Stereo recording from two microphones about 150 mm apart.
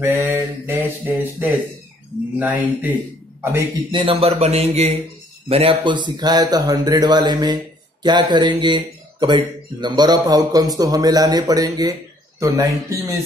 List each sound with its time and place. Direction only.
0.0 s mantra: 15° right (ahead or behind)
3.9 s a man's voice: 35° right (ahead or behind); by 13.2 s 20° right (ahead or behind)